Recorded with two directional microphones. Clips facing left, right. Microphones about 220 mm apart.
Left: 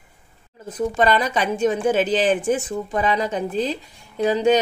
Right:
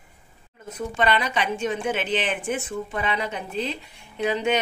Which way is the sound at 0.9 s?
40° left (ahead or behind).